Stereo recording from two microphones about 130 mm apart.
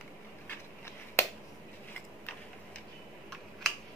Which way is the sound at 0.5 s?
20° left (ahead or behind).